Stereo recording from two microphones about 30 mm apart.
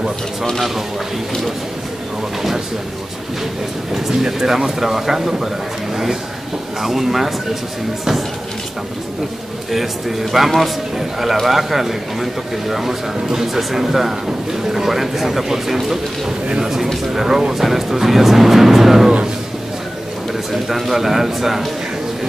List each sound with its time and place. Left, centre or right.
4.1 s speech: right
4.5 s a man's voice: centre
6.8 s a man's voice: centre
9.7 s a man's voice: centre
20.5 s a man's voice: centre